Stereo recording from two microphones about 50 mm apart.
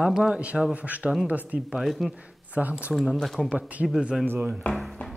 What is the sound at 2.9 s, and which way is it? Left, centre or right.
Speech, centre.